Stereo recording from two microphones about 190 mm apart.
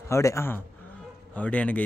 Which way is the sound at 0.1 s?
15° left (ahead or behind).